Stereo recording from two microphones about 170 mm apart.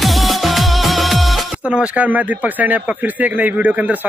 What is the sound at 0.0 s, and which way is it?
Speech, centre (ahead or behind).